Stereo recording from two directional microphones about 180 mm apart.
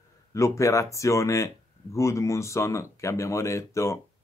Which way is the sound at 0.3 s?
15° left (ahead or behind).